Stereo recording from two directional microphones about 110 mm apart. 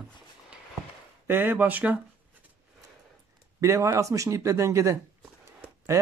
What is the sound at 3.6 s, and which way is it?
Speech, 30° right (ahead or behind).